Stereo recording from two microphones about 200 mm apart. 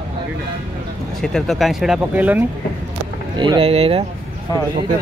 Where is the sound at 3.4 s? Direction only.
25° right (ahead or behind).